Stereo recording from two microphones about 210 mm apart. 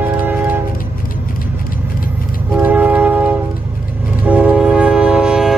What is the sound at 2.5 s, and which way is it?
Train, 10° right (ahead or behind).